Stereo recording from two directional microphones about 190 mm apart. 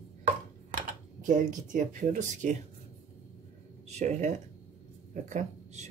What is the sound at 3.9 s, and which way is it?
Speech, 35° right (ahead or behind).